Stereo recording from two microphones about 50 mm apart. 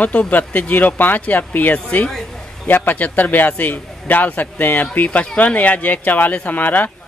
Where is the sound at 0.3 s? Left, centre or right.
Left.